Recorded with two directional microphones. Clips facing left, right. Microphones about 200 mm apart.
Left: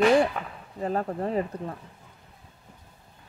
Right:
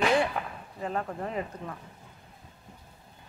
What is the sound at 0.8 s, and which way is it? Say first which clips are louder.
Speech: left 5 dB; 35° left (ahead or behind).